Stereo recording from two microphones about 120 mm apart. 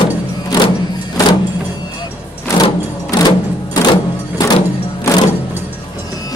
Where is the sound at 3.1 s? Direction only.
35° left (ahead or behind).